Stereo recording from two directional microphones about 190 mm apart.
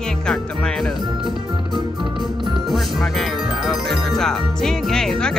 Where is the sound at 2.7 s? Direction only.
Centre (ahead or behind).